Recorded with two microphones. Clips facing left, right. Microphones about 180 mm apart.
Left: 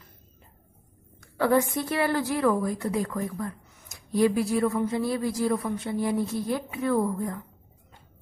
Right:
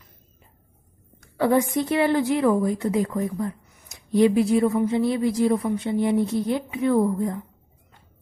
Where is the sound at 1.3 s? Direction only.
15° right (ahead or behind).